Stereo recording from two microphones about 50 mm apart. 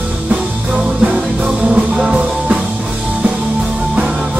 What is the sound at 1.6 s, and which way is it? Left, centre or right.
Music, centre.